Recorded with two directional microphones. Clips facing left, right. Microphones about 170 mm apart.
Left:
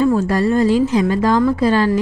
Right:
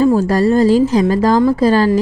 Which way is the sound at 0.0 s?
35° right (ahead or behind).